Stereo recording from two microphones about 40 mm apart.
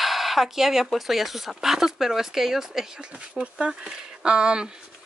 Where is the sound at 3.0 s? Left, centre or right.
Right.